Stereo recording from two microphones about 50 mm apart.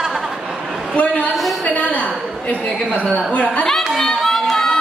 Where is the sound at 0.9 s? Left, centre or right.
Left.